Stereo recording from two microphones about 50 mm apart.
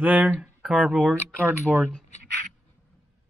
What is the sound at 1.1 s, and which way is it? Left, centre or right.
Speech, right.